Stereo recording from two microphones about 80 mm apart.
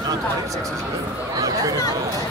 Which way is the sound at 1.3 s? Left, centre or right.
Right.